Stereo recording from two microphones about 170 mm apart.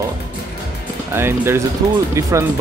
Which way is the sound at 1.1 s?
15° right (ahead or behind).